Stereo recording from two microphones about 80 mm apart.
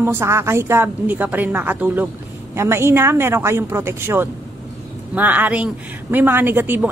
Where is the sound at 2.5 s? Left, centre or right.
Right.